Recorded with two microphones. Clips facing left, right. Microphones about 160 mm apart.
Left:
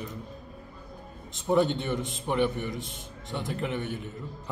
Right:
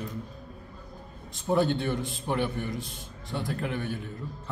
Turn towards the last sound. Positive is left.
turn(degrees=20)  # may be behind; listen again after turning